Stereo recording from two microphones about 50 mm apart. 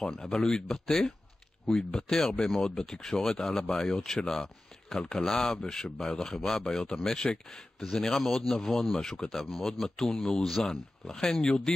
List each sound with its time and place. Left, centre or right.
0.0 s speech: centre